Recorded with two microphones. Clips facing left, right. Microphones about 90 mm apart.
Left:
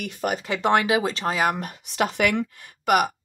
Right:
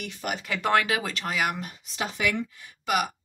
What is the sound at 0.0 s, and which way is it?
Speech, 40° left (ahead or behind).